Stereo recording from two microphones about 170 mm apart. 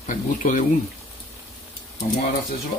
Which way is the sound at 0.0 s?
50° left (ahead or behind).